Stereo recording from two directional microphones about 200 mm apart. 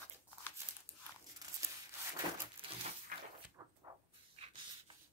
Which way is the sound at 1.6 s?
15° right (ahead or behind).